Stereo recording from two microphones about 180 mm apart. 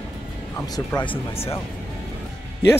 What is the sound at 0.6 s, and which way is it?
Speech, 20° left (ahead or behind).